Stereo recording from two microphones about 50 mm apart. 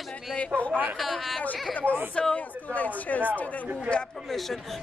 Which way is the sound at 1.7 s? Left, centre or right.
Left.